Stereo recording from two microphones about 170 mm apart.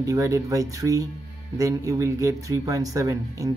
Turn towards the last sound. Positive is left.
turn(degrees=-20)  # may be behind; listen again after turning